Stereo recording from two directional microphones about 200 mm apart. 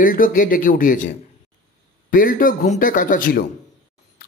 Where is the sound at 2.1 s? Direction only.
45° left (ahead or behind).